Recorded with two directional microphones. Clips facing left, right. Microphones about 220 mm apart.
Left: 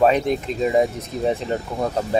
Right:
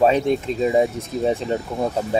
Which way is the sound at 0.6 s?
Centre (ahead or behind).